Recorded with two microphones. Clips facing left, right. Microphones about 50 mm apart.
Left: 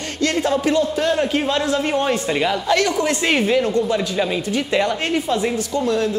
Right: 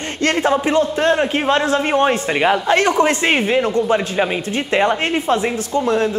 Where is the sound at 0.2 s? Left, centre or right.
Right.